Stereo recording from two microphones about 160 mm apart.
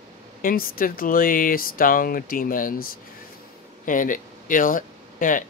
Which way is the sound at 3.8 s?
55° left (ahead or behind).